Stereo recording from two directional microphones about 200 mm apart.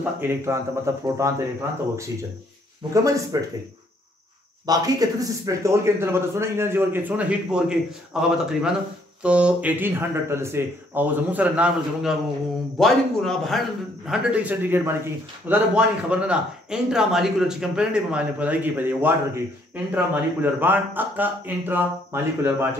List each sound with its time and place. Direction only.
0.2 s a man's voice: 15° right (ahead or behind)
2.9 s a man's voice: 15° right (ahead or behind)
4.6 s a man's voice: 20° right (ahead or behind)